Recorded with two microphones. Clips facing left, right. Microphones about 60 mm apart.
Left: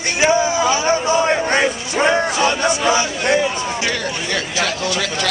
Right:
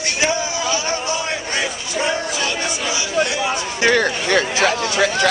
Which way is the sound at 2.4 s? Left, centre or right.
Left.